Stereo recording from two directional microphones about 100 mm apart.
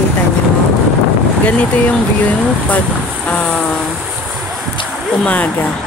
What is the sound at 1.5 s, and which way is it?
A woman's voice, 15° left (ahead or behind).